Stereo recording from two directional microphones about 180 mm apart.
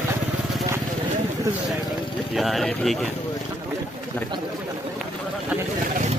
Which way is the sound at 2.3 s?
Centre (ahead or behind).